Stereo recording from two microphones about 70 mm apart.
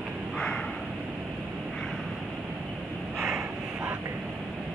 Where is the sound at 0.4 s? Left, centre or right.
Centre.